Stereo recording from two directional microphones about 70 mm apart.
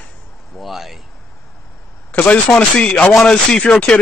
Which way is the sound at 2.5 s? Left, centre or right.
Centre.